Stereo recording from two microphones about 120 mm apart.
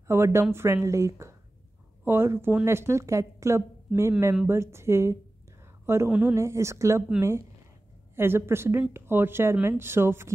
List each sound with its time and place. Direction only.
0.1 s a woman's voice: 20° right (ahead or behind)
6.0 s a woman's voice: 5° right (ahead or behind)
6.3 s a woman's voice: 25° right (ahead or behind)